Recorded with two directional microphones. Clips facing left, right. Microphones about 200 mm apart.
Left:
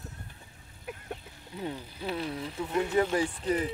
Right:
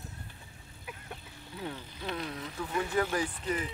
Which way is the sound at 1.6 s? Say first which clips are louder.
Left 4 dB; 15° left (ahead or behind).